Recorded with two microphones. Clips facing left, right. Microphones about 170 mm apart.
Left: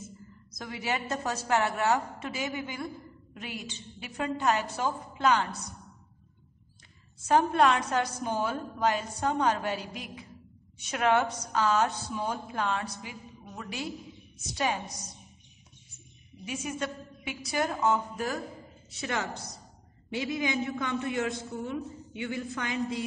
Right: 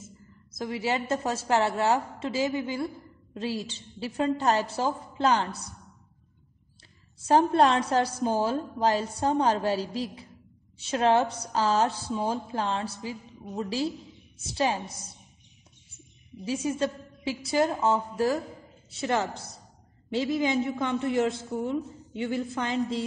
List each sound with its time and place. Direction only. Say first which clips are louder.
0.6 s a woman's voice: right 5 dB; 25° right (ahead or behind)
7.2 s a woman's voice: right 2 dB; 35° right (ahead or behind)
16.4 s a woman's voice: right 6 dB; 30° right (ahead or behind)
20.8 s a woman's voice: right 5 dB; 25° right (ahead or behind)